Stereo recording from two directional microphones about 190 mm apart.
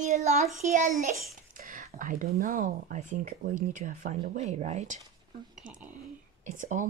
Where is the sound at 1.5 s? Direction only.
45° right (ahead or behind).